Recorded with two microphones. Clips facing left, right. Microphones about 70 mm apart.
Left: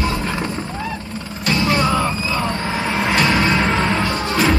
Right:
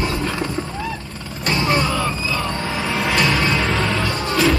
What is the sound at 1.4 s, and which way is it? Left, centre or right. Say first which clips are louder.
Music: left 1 dB; right.